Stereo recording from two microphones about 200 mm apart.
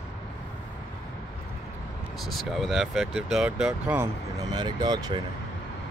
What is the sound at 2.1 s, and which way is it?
Speech, centre (ahead or behind).